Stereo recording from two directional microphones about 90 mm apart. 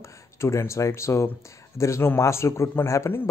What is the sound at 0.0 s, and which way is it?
A man's voice, 30° left (ahead or behind).